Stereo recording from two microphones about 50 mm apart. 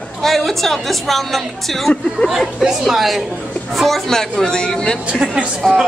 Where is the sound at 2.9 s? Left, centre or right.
Centre.